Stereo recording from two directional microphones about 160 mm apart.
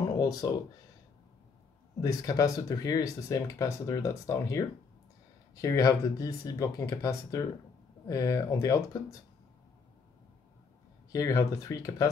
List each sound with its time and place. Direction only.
0.2 s speech: 25° left (ahead or behind)
2.0 s speech: 20° left (ahead or behind)
11.1 s speech: 20° left (ahead or behind)